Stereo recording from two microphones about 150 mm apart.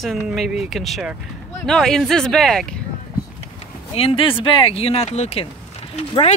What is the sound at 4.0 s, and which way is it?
Speech, 40° left (ahead or behind).